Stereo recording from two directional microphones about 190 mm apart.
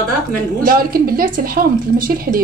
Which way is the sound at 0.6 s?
50° right (ahead or behind).